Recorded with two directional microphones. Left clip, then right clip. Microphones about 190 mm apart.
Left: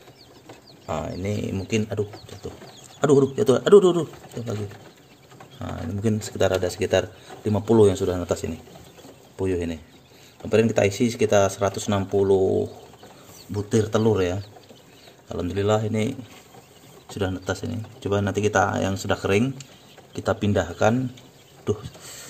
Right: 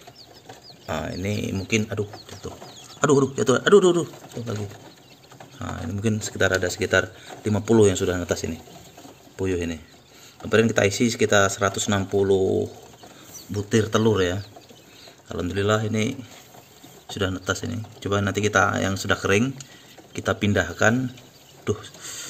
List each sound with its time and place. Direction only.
0.8 s speech: 5° right (ahead or behind)
5.6 s speech: 5° left (ahead or behind)
21.6 s a sound: 5° left (ahead or behind)